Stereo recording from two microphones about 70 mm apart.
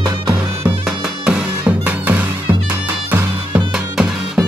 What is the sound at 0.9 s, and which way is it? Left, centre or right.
Music, centre.